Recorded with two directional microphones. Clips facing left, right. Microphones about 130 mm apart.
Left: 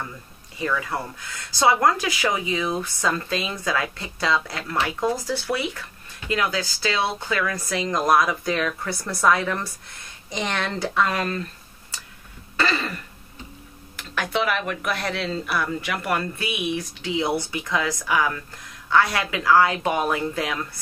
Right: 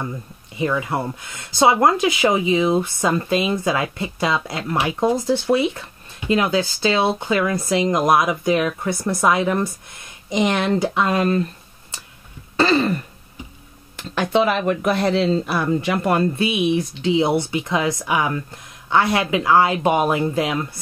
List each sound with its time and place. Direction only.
0.6 s speech: 20° right (ahead or behind)
12.5 s throat clearing: 25° right (ahead or behind)
13.9 s speech: 25° right (ahead or behind)